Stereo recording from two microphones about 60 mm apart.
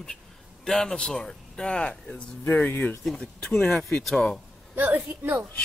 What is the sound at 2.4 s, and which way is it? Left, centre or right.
Speech, left.